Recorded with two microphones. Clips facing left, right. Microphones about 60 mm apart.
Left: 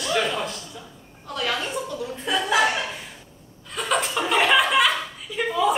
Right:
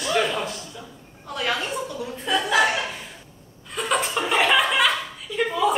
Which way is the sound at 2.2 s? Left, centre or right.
Centre.